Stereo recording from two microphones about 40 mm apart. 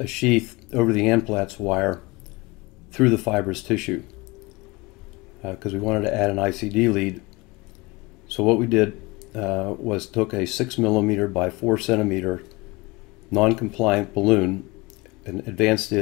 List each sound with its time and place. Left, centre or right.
0.0 s speech: centre
5.4 s speech: centre
8.3 s speech: centre